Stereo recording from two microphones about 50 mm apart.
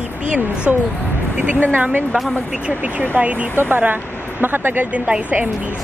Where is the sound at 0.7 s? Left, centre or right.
Right.